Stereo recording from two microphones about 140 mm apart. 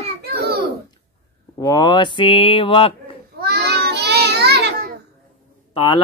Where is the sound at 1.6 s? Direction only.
30° left (ahead or behind).